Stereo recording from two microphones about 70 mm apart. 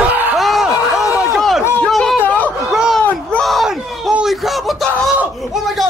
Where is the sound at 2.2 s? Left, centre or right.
Left.